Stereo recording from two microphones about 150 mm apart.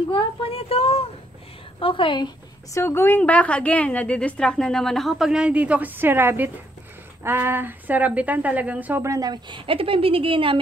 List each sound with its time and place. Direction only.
0.1 s a sound: 40° left (ahead or behind)
1.8 s a woman's voice: 35° left (ahead or behind)
2.8 s a woman's voice: 15° left (ahead or behind); by 10.6 s 35° right (ahead or behind)